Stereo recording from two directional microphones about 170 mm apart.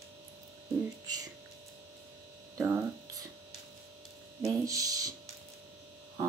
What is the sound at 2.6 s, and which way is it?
Hum, 15° right (ahead or behind).